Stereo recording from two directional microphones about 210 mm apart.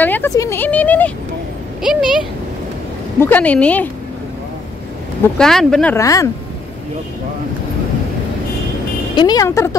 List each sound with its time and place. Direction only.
0.0 s speech: 10° left (ahead or behind)
1.8 s speech: 5° right (ahead or behind)
3.2 s speech: 10° left (ahead or behind)
5.4 s speech: centre (ahead or behind)
5.9 s speech: 15° left (ahead or behind)
9.1 s speech: 20° left (ahead or behind)